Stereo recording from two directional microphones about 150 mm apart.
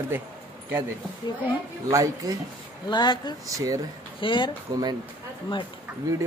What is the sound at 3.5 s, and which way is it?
Speech, 25° right (ahead or behind).